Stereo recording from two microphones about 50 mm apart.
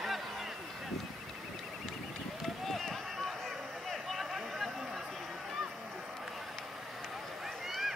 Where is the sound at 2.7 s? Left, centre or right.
Centre.